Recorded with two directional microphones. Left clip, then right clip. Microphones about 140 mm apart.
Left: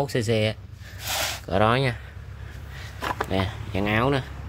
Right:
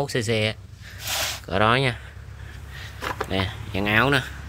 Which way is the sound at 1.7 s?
5° left (ahead or behind).